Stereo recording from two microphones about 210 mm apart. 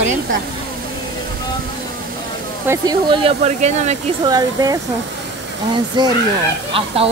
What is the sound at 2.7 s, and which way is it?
Speech, 20° right (ahead or behind).